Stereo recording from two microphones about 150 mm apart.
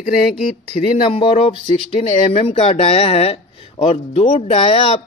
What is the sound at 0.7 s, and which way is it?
Speech, 50° left (ahead or behind).